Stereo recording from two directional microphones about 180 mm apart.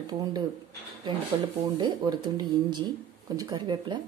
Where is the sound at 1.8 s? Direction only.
25° right (ahead or behind).